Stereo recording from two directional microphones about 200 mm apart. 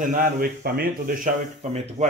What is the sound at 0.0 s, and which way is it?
Speech, 40° right (ahead or behind).